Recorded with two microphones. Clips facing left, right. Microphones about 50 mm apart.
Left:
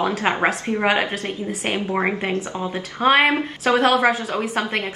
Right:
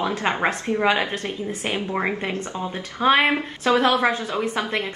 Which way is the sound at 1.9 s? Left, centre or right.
Centre.